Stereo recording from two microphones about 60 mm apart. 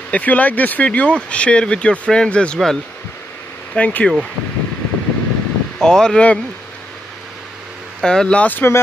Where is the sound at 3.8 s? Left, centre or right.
Left.